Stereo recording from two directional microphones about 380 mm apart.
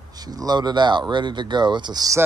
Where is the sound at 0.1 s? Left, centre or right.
Centre.